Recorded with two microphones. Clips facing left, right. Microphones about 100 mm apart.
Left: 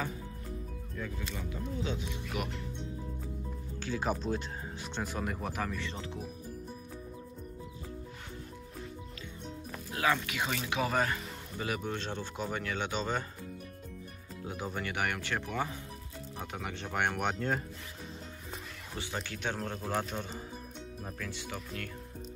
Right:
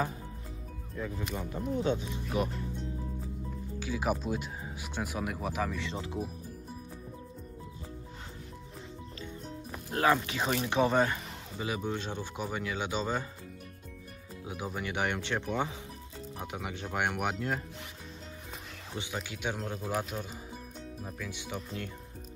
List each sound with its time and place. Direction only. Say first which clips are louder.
1.3 s speech: right 5 dB; 45° right (ahead or behind); by 2.6 s 30° right (ahead or behind)
3.8 s speech: right 1 dB; 10° right (ahead or behind)
10.1 s speech: right 4 dB; 30° right (ahead or behind); by 13.2 s 10° right (ahead or behind)
14.4 s speech: even; 10° right (ahead or behind)
19.1 s speech: even; 10° right (ahead or behind)
21.3 s speech: right 1 dB; 20° right (ahead or behind)